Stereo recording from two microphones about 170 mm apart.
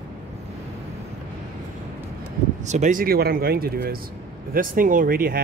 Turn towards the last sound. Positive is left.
turn(degrees=-60)  # may be behind; listen again after turning